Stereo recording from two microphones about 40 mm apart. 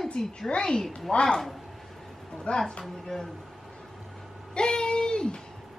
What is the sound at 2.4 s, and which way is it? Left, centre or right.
Speech, left.